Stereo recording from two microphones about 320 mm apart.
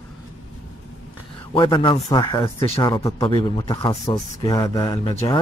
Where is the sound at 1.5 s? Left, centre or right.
Centre.